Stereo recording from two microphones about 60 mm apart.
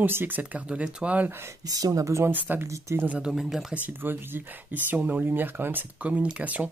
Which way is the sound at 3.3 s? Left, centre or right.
Centre.